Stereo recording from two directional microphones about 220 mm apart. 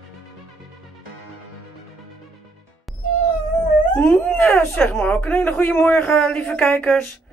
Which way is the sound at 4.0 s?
5° left (ahead or behind).